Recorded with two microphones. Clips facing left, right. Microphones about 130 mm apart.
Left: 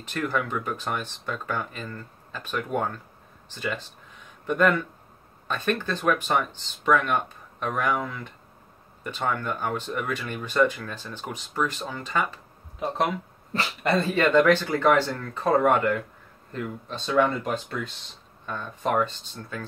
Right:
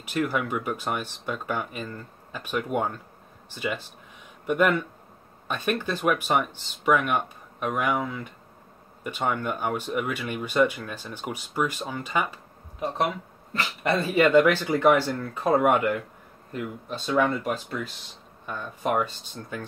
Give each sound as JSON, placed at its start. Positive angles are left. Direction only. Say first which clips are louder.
{"t": 0.0, "sound": "speech", "louder": "right 1 dB", "side_deg": -10}
{"t": 13.9, "sound": "speech", "louder": "right 2 dB", "side_deg": -10}
{"t": 19.5, "sound": "speech", "louder": "right 1 dB", "side_deg": -20}